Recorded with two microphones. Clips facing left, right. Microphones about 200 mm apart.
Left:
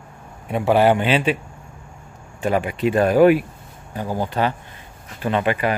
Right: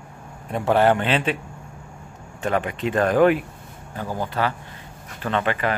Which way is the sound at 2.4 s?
10° left (ahead or behind).